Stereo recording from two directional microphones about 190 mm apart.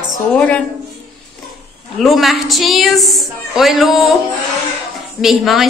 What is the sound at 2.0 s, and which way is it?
A woman's voice, centre (ahead or behind).